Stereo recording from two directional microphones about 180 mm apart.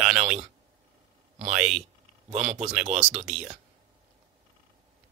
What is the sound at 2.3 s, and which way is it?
Speech, 35° right (ahead or behind).